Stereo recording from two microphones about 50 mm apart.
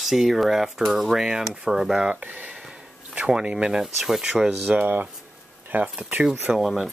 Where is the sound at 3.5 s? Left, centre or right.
Centre.